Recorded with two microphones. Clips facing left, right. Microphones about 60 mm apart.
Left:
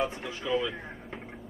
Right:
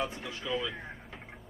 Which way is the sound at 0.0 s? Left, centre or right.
Centre.